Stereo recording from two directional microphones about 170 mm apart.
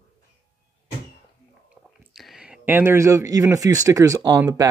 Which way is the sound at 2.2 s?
Centre (ahead or behind).